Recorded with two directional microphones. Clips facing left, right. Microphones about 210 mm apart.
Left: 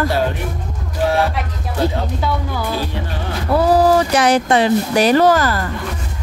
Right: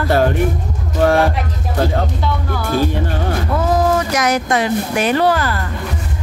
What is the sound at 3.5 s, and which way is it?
Speech, 35° left (ahead or behind).